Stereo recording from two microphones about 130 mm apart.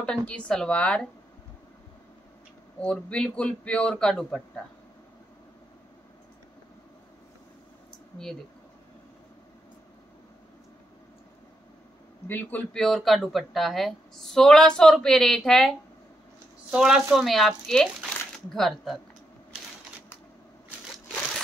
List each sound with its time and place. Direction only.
0.0 s a man's voice: 10° left (ahead or behind)
2.8 s a man's voice: 10° left (ahead or behind)
12.3 s a man's voice: 15° left (ahead or behind)
12.8 s a woman's voice: centre (ahead or behind)
16.7 s a woman's voice: 5° right (ahead or behind)